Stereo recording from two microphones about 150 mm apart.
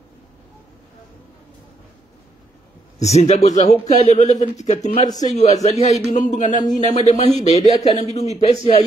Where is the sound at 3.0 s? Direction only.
45° left (ahead or behind).